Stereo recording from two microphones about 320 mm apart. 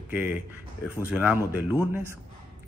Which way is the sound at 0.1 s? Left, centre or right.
Centre.